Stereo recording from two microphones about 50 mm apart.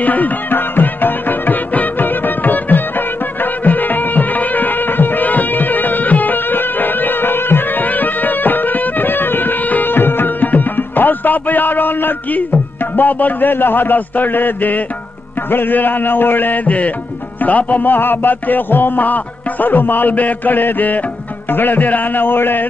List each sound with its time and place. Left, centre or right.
0.0 s music: left
12.9 s a man's voice: left